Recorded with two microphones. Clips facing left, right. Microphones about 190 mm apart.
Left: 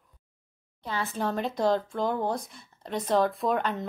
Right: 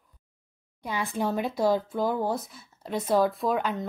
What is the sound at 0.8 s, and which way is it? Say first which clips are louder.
Speech: right 2 dB; 15° right (ahead or behind).